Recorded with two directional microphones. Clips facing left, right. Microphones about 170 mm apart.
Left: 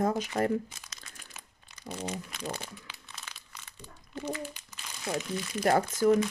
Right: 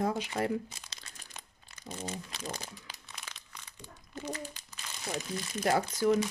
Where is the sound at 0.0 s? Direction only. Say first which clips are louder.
Left 3 dB; 45° left (ahead or behind).